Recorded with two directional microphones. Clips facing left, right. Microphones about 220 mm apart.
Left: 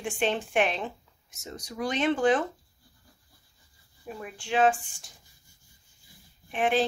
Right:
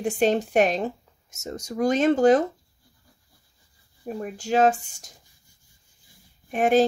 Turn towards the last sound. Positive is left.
turn(degrees=-45)  # may be behind; listen again after turning